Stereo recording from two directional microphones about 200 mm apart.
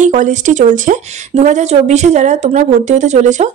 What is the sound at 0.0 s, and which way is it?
Speech, 40° right (ahead or behind).